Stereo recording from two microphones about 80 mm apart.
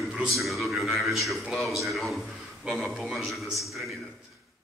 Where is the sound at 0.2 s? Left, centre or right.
Centre.